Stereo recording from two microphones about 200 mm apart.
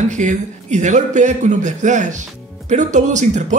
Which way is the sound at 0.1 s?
35° right (ahead or behind).